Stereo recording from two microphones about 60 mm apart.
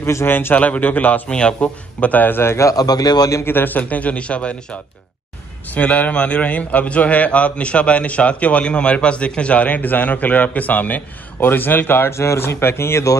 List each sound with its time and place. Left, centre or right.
0.0 s speech: left
0.6 s a man's voice: left
2.7 s speech: left
3.4 s a man's voice: left
5.8 s a man's voice: left
12.2 s speech: left